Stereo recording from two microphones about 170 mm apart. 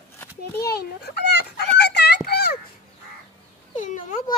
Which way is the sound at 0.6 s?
65° left (ahead or behind).